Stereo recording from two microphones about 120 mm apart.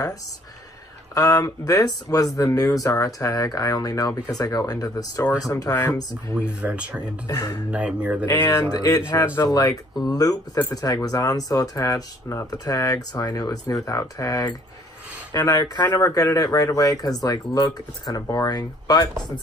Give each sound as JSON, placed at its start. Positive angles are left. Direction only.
{"t": 1.1, "sound": "speech", "side_deg": 30}
{"t": 5.7, "sound": "speech", "side_deg": 15}
{"t": 6.4, "sound": "speech", "side_deg": -10}
{"t": 7.2, "sound": "speech", "side_deg": 35}
{"t": 7.7, "sound": "speech", "side_deg": -10}
{"t": 8.5, "sound": "speech", "side_deg": 30}